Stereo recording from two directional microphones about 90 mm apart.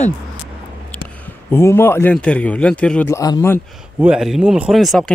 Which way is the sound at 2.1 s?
10° left (ahead or behind).